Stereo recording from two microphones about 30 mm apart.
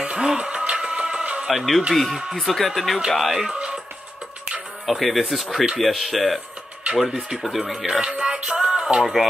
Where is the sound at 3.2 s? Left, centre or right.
Centre.